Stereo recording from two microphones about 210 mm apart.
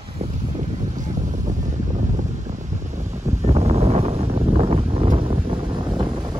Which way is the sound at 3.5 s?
30° right (ahead or behind).